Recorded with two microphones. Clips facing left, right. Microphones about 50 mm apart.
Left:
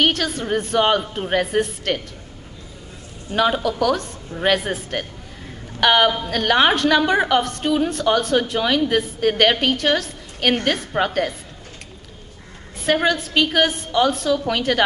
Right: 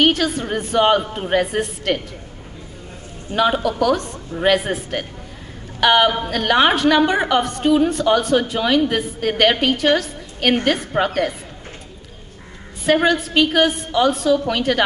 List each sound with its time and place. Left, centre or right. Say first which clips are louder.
0.0 s a woman's voice: right 3 dB; centre
3.3 s a woman's voice: right 1 dB; centre
12.8 s a woman's voice: right 3 dB; centre